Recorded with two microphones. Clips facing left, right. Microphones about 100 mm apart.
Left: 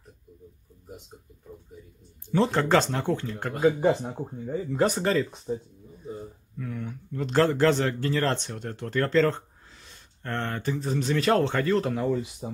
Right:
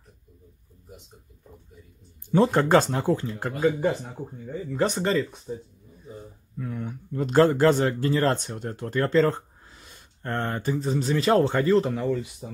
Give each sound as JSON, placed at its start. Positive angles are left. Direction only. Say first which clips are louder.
{"t": 2.3, "sound": "speech", "louder": "right 3 dB", "side_deg": -15}
{"t": 3.8, "sound": "speech", "louder": "left 2 dB", "side_deg": 20}
{"t": 4.8, "sound": "speech", "louder": "even", "side_deg": 0}
{"t": 5.5, "sound": "speech", "louder": "left 4 dB", "side_deg": 25}
{"t": 6.6, "sound": "a sound", "louder": "right 2 dB", "side_deg": -20}
{"t": 7.5, "sound": "speech", "louder": "right 2 dB", "side_deg": -15}
{"t": 12.0, "sound": "speech", "louder": "even", "side_deg": 15}